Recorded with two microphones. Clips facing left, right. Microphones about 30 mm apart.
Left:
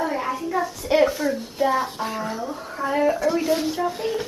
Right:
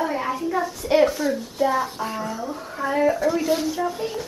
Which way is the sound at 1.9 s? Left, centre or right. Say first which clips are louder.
Even; left.